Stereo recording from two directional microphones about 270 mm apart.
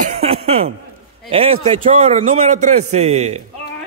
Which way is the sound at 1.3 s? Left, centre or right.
Right.